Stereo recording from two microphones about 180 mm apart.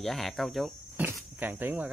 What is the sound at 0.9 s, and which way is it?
Speech, 10° right (ahead or behind).